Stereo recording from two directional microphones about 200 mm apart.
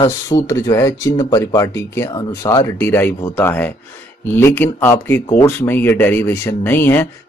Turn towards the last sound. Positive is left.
turn(degrees=10)  # may be behind; listen again after turning